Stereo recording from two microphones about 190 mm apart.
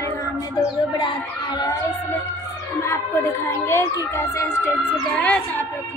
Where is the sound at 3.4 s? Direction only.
15° left (ahead or behind).